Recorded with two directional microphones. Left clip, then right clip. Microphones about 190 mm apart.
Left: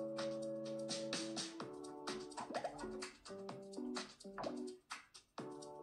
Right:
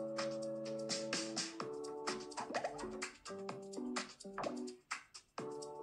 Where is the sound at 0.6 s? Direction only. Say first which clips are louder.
Right 2 dB; centre (ahead or behind).